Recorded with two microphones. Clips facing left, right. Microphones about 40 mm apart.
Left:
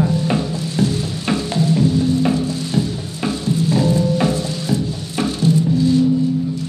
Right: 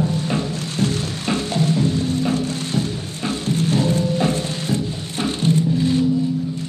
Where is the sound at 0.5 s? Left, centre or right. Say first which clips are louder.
Left 3 dB; right.